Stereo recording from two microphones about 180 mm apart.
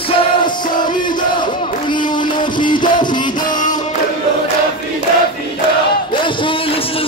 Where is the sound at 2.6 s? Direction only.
25° left (ahead or behind).